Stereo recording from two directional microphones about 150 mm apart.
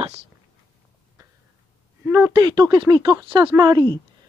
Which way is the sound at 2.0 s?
15° right (ahead or behind).